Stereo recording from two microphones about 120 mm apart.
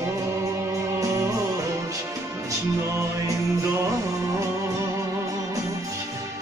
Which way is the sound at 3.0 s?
25° right (ahead or behind).